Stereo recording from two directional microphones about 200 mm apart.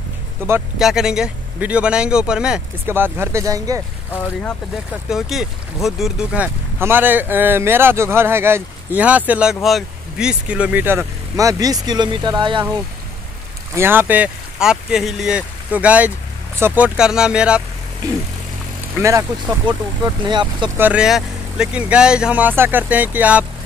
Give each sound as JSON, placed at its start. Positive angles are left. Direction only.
{"t": 0.7, "sound": "speech", "side_deg": 0}
{"t": 4.1, "sound": "speech", "side_deg": 5}
{"t": 13.7, "sound": "speech", "side_deg": -10}
{"t": 18.9, "sound": "speech", "side_deg": -15}
{"t": 20.7, "sound": "speech", "side_deg": -5}